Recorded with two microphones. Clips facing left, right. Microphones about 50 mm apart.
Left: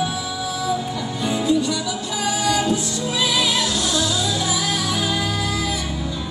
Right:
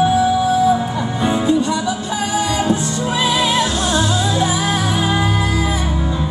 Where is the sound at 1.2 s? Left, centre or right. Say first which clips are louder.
Right 4 dB; right.